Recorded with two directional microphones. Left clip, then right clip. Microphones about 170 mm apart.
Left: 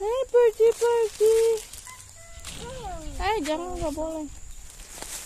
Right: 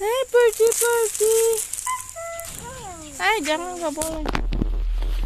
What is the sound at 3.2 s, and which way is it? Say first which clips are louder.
Speech: right 5 dB; 5° left (ahead or behind).